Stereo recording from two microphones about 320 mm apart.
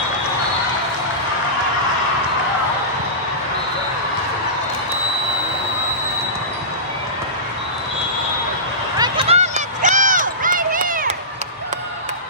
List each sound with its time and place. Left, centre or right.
8.9 s run: centre